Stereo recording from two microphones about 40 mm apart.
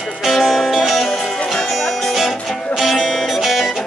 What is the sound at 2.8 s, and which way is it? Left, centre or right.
Music, centre.